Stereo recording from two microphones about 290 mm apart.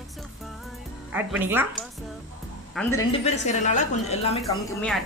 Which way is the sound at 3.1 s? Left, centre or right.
Left.